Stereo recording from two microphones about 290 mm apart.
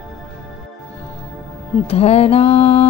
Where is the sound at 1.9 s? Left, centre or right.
Left.